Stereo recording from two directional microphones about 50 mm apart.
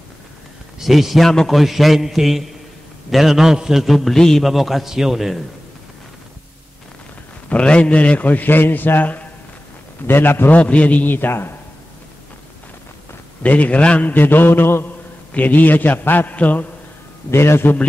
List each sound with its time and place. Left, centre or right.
0.7 s a man's voice: centre
3.8 s a man's voice: centre
7.4 s a man's voice: left
8.3 s a man's voice: left
10.5 s a man's voice: left
11.1 s a man's voice: left
13.4 s a man's voice: left
15.3 s a man's voice: left
17.3 s a man's voice: left